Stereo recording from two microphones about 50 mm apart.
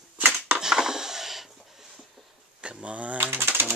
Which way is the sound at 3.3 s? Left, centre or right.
Right.